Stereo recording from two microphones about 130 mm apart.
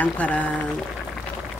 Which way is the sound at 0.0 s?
10° left (ahead or behind).